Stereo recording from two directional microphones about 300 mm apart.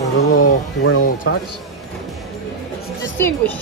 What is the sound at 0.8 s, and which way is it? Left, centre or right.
Speech, left.